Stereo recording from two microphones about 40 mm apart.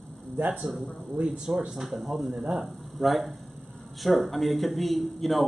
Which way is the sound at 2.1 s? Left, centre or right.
Right.